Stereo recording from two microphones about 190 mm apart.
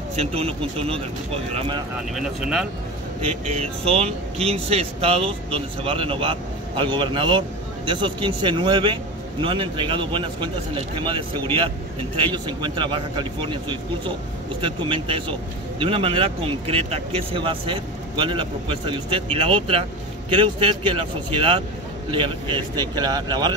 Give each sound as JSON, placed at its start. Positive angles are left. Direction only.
{"t": 0.1, "sound": "speech", "side_deg": -30}
{"t": 2.1, "sound": "speech", "side_deg": -5}
{"t": 3.2, "sound": "speech", "side_deg": -35}